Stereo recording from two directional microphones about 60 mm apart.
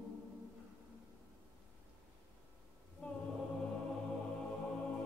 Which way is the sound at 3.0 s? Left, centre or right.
Left.